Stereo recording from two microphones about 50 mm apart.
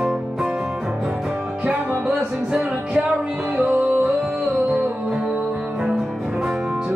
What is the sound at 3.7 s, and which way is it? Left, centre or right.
Music, right.